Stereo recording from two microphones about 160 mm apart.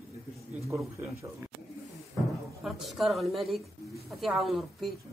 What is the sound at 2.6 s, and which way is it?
A woman's voice, centre (ahead or behind).